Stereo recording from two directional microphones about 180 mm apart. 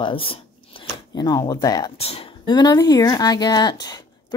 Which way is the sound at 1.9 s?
35° left (ahead or behind).